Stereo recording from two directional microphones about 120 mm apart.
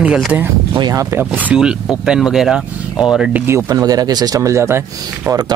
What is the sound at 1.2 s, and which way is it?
Speech, 10° right (ahead or behind).